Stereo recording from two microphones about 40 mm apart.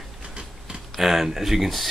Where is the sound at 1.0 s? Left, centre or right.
Centre.